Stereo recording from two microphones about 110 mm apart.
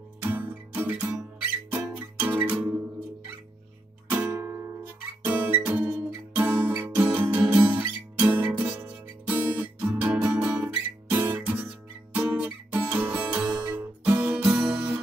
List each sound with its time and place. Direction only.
0.2 s music: 15° right (ahead or behind)
2.1 s music: 15° right (ahead or behind)
4.1 s music: 15° right (ahead or behind)